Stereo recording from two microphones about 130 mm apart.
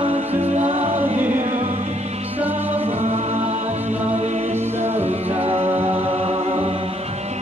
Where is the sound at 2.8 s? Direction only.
60° right (ahead or behind).